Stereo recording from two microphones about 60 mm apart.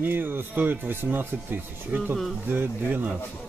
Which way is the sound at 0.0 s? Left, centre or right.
Right.